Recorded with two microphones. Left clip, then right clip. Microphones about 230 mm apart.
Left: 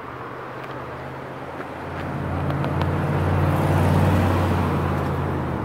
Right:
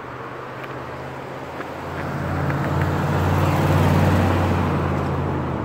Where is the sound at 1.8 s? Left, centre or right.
Right.